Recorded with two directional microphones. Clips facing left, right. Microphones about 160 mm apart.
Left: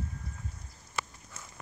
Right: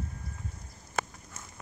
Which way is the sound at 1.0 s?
45° right (ahead or behind).